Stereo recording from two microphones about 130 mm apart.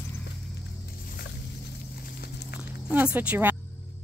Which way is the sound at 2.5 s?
10° right (ahead or behind).